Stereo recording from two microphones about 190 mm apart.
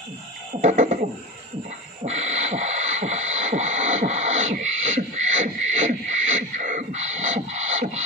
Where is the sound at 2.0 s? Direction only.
35° right (ahead or behind).